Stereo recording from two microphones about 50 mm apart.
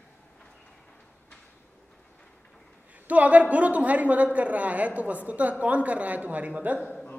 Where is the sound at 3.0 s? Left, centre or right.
Right.